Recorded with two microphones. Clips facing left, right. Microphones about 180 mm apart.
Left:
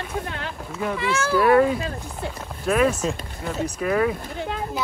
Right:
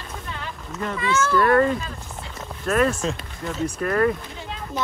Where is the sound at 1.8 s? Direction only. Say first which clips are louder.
Left 5 dB; 60° left (ahead or behind).